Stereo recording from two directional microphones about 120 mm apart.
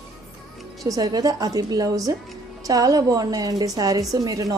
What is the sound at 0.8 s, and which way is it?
A woman's voice, 30° right (ahead or behind).